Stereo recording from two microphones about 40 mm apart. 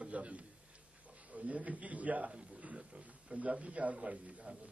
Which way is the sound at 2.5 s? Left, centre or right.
Right.